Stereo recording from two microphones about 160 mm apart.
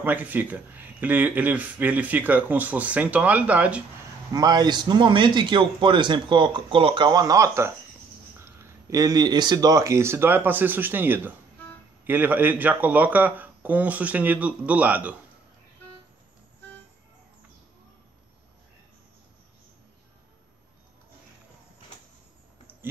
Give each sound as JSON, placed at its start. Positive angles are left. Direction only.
{"t": 0.0, "sound": "speech", "side_deg": -10}
{"t": 4.3, "sound": "a man's voice", "side_deg": -25}